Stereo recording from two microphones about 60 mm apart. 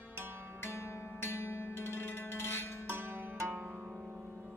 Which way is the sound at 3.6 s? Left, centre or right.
Centre.